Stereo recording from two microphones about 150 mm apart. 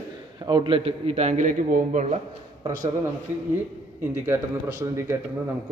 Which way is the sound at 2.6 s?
20° right (ahead or behind).